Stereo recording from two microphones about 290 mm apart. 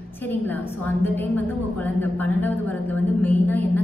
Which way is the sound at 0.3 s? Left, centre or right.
Centre.